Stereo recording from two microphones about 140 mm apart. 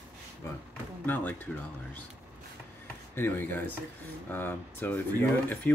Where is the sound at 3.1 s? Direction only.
15° left (ahead or behind).